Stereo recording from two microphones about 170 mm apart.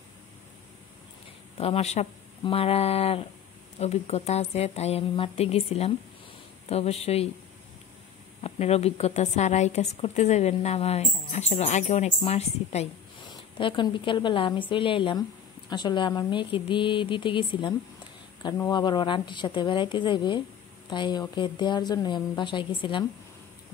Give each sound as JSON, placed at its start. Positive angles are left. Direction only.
{"t": 1.6, "sound": "a woman's voice", "side_deg": 35}
{"t": 8.4, "sound": "a woman's voice", "side_deg": 35}
{"t": 13.3, "sound": "a woman's voice", "side_deg": 30}